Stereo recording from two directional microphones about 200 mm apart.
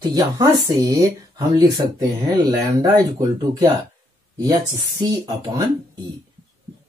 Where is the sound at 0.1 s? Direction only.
20° right (ahead or behind).